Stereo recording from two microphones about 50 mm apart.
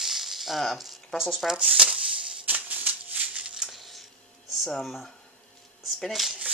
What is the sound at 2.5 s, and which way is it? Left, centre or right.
Maraca, right.